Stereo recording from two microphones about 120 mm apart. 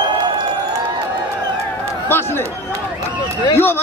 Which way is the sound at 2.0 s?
20° left (ahead or behind).